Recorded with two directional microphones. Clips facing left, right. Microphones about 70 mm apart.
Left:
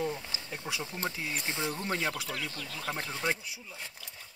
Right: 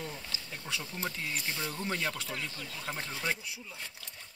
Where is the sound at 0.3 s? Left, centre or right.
Left.